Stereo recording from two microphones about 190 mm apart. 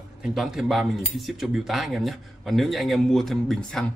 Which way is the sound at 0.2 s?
Centre (ahead or behind).